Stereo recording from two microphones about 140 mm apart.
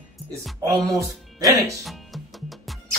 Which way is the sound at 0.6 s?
25° right (ahead or behind).